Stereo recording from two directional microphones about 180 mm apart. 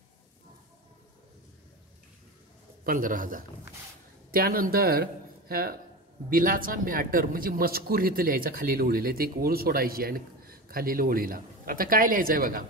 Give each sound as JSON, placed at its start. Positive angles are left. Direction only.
{"t": 2.8, "sound": "speech", "side_deg": -50}